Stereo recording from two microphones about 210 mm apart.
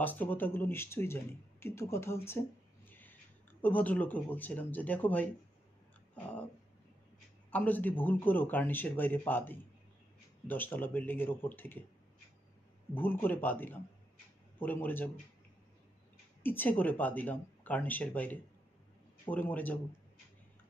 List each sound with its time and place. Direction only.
0.0 s speech: 10° left (ahead or behind)
2.9 s a sound: 10° left (ahead or behind)
3.6 s speech: 10° left (ahead or behind)
7.5 s speech: 10° left (ahead or behind)
12.9 s speech: 10° left (ahead or behind)
16.4 s speech: 10° left (ahead or behind)